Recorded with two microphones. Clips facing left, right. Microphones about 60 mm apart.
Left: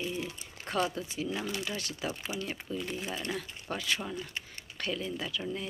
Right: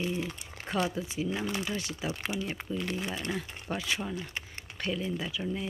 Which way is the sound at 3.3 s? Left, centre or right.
Centre.